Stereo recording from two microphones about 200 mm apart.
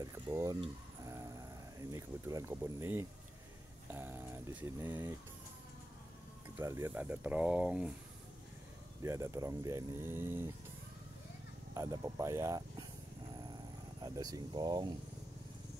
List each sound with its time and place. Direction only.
0.0 s speech: 15° right (ahead or behind)
6.6 s speech: 10° right (ahead or behind)
9.0 s speech: 15° right (ahead or behind)
11.7 s speech: 15° right (ahead or behind)
14.0 s speech: 20° right (ahead or behind)